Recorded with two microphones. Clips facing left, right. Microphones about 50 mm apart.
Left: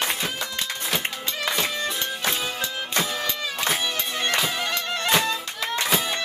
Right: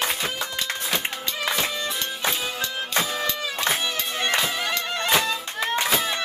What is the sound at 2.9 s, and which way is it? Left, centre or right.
Music, centre.